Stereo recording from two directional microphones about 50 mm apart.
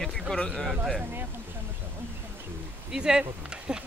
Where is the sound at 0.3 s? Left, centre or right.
Left.